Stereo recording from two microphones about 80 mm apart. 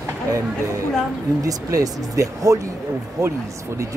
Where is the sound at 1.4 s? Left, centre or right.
Right.